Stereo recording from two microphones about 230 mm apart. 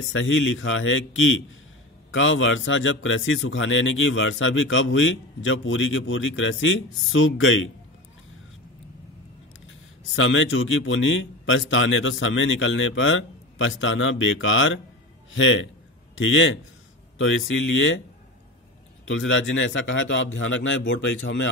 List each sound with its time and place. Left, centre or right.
0.1 s a man's voice: left
10.1 s a man's voice: left
19.0 s a man's voice: left